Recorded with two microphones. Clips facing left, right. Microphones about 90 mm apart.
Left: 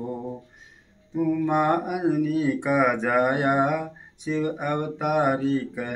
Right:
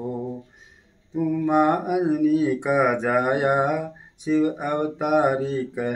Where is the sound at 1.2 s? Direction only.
5° right (ahead or behind).